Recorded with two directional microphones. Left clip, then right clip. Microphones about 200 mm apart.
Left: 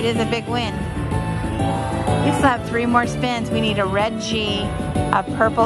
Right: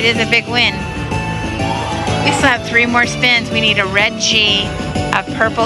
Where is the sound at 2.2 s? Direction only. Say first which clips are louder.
Right 5 dB; 10° left (ahead or behind).